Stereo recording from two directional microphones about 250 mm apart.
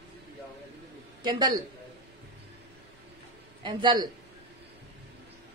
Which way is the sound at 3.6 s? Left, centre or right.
Centre.